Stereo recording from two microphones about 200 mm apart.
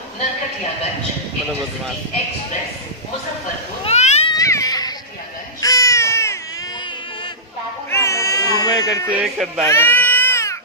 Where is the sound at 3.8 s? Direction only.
35° left (ahead or behind).